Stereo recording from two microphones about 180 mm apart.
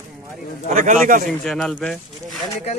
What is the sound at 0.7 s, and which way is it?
Speech, 45° right (ahead or behind).